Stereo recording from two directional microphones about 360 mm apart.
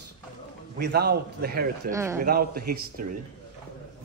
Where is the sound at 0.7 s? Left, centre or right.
Right.